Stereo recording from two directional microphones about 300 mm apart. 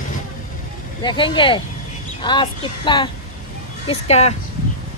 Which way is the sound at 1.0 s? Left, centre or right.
Centre.